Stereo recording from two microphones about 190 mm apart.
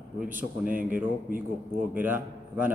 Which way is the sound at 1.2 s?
50° right (ahead or behind).